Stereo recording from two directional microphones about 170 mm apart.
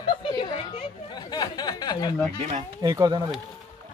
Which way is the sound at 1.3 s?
25° left (ahead or behind).